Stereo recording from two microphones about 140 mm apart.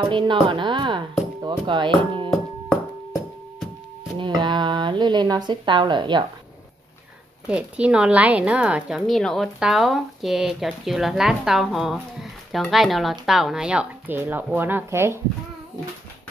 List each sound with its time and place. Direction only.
0.1 s a woman's voice: 35° right (ahead or behind)
4.2 s speech: 35° right (ahead or behind)
7.4 s a woman's voice: 10° right (ahead or behind)